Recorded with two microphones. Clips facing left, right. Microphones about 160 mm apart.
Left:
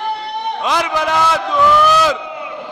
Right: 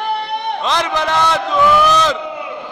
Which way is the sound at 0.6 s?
10° left (ahead or behind).